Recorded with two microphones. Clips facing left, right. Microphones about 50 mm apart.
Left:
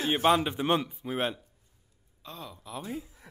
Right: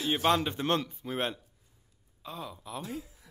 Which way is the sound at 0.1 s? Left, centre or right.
Centre.